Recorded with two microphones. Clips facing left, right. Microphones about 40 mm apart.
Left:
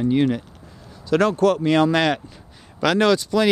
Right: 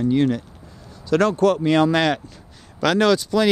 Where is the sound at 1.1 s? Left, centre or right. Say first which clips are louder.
Even; centre.